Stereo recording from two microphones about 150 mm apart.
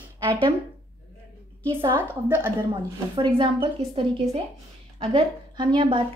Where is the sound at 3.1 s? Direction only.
30° right (ahead or behind).